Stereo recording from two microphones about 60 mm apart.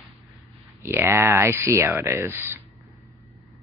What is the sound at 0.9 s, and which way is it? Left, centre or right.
Speech, right.